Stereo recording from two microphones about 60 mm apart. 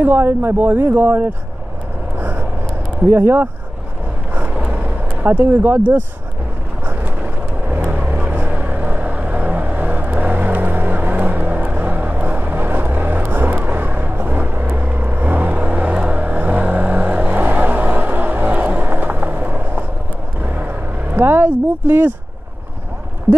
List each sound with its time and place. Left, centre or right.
0.0 s speech: right
2.1 s vehicle: right
3.1 s speech: right
4.3 s vehicle: right
16.2 s vehicle: right